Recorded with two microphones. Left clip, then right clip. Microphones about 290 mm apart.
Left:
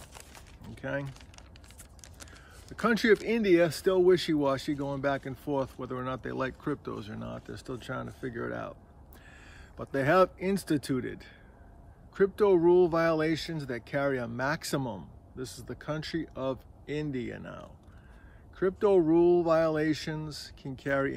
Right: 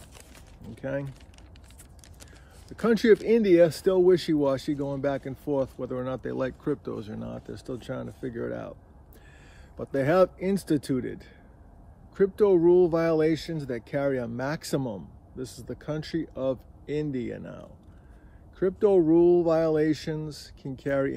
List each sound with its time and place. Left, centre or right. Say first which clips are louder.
0.1 s a sound: left 1 dB; centre
0.7 s speech: right 3 dB; centre
2.7 s speech: right 4 dB; centre
9.8 s speech: right 2 dB; centre